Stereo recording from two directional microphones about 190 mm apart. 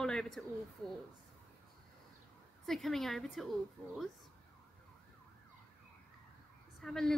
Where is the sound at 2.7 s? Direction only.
Centre (ahead or behind).